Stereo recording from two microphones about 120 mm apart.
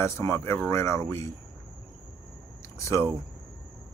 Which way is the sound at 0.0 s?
20° left (ahead or behind).